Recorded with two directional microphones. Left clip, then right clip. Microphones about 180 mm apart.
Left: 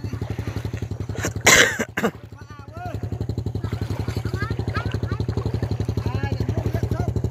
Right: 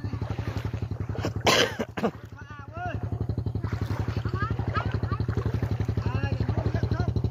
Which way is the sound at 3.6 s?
10° right (ahead or behind).